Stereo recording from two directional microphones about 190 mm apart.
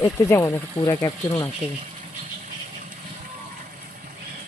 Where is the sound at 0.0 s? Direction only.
15° left (ahead or behind).